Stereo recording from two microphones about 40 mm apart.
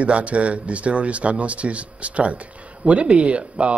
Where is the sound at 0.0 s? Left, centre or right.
Right.